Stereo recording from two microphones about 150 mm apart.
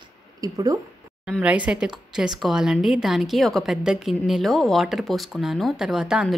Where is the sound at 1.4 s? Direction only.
10° right (ahead or behind).